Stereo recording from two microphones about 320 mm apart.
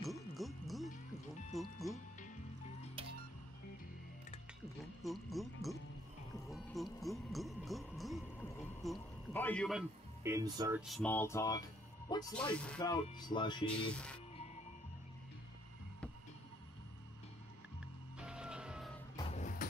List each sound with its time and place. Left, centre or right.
0.0 s music: centre
3.0 s music: centre
5.0 s music: centre
10.9 s speech: centre
18.2 s music: centre
19.1 s vehicle: centre